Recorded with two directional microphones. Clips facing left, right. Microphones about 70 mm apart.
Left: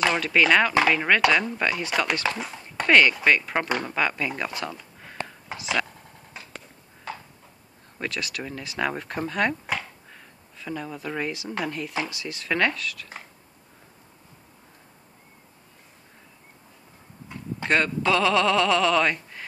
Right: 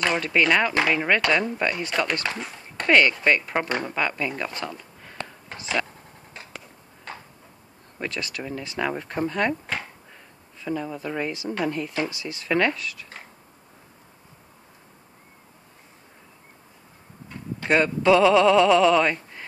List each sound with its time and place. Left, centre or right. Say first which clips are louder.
0.3 s speech: left 2 dB; centre
5.5 s whispering: even; centre
6.4 s a sound: even; centre
8.0 s speech: even; centre
10.6 s speech: right 4 dB; centre
17.6 s speech: right 4 dB; centre